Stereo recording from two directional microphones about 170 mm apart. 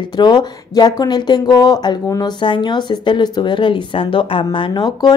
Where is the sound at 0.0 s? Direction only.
25° left (ahead or behind).